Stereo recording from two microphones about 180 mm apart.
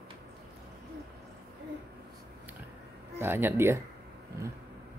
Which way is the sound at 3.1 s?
10° right (ahead or behind).